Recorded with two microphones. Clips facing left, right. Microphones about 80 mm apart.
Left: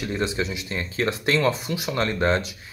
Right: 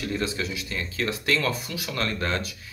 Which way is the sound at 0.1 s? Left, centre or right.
Left.